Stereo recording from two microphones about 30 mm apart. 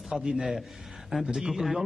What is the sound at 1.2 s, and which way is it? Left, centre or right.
Speech, centre.